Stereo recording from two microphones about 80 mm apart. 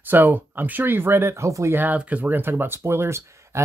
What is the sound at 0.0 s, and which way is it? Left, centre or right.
Speech, right.